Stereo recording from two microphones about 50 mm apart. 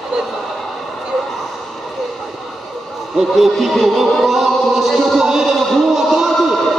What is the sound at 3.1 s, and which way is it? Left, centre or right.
Music, centre.